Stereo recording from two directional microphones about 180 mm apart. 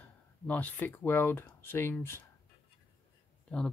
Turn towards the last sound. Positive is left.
turn(degrees=5)  # may be behind; listen again after turning